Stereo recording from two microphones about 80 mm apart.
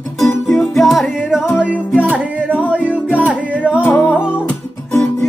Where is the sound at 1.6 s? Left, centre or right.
Centre.